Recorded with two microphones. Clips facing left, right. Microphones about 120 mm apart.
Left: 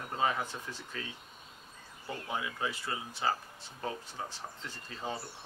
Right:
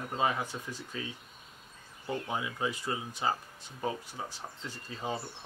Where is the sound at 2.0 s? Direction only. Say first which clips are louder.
Right 3 dB; 25° right (ahead or behind).